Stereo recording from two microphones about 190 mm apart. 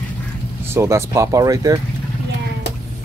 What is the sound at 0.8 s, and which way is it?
Speech, 15° right (ahead or behind).